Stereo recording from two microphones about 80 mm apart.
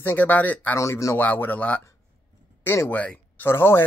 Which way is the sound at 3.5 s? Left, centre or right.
Left.